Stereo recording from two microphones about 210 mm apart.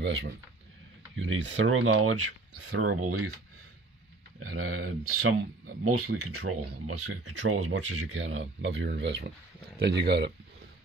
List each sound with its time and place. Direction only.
0.0 s speech: 55° right (ahead or behind)
1.1 s speech: 65° right (ahead or behind); by 3.3 s 90° right
4.4 s speech: 90° right; by 10.3 s 55° right (ahead or behind)